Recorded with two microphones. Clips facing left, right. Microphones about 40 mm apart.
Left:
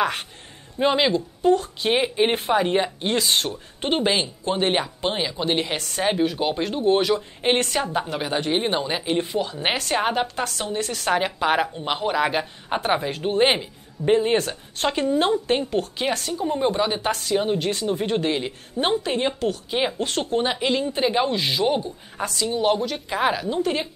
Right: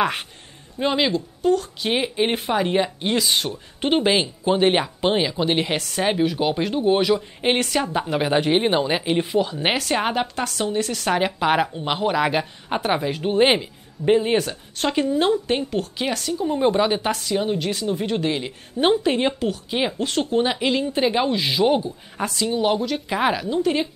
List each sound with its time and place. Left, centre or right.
0.0 s speech: centre
0.7 s a woman's voice: centre
1.9 s a woman's voice: centre
16.1 s speech: centre
16.4 s a woman's voice: centre
18.9 s a woman's voice: centre